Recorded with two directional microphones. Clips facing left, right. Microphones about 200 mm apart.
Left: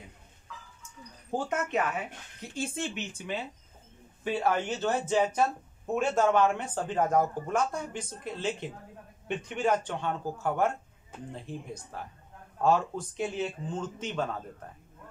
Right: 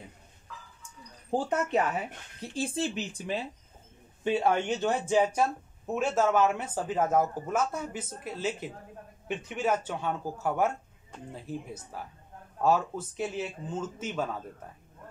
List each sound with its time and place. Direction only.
1.3 s speech: 35° right (ahead or behind)
4.2 s speech: 25° right (ahead or behind); by 14.3 s 5° right (ahead or behind)